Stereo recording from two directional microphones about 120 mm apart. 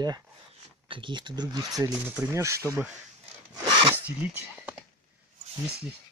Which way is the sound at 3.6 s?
40° right (ahead or behind).